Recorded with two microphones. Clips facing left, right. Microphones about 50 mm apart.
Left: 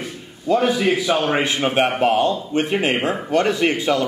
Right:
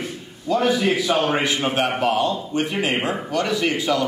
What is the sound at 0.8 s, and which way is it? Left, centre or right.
Speech, centre.